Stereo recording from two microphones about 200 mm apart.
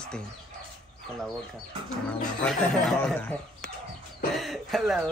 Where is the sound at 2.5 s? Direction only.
5° left (ahead or behind).